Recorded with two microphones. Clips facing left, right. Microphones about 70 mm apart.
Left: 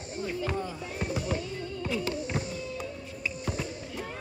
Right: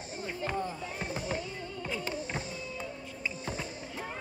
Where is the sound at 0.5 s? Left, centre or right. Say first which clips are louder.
Left 1 dB; centre.